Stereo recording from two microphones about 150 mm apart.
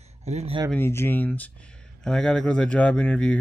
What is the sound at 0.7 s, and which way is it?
Speech, 15° left (ahead or behind).